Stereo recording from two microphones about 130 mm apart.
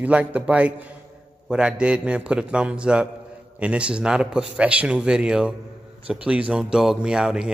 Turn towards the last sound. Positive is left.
turn(degrees=-5)  # may be behind; listen again after turning